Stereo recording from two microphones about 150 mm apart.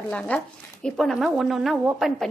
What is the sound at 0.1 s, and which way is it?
A woman's voice, 5° left (ahead or behind).